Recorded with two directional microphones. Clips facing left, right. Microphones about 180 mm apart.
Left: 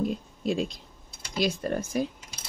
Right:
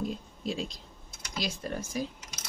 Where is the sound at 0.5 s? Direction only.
55° left (ahead or behind).